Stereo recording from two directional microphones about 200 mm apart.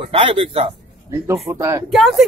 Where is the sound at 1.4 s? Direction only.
15° right (ahead or behind).